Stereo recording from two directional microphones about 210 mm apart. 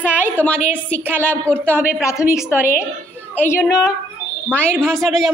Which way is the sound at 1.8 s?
5° right (ahead or behind).